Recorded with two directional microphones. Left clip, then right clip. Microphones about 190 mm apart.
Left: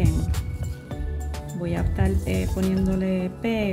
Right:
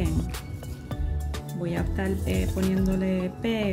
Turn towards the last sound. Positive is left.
turn(degrees=5)  # may be behind; listen again after turning